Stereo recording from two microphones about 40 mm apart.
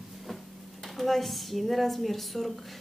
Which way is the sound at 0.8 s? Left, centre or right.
Centre.